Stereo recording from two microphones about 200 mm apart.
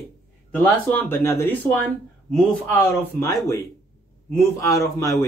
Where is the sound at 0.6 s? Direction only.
10° left (ahead or behind).